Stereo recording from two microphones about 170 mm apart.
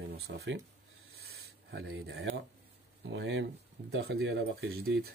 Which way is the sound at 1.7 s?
90° right.